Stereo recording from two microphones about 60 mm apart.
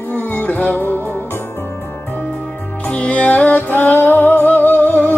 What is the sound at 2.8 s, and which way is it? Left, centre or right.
Music, left.